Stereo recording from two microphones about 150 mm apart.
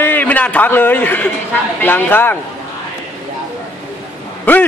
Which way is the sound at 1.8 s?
15° left (ahead or behind).